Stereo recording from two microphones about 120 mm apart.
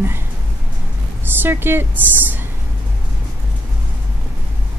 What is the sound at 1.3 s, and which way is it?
Speech, 20° right (ahead or behind).